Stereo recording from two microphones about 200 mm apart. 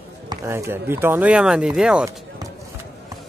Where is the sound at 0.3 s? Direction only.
15° right (ahead or behind).